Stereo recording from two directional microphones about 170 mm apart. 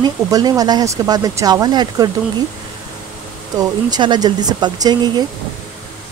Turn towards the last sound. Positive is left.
turn(degrees=-25)  # may be behind; listen again after turning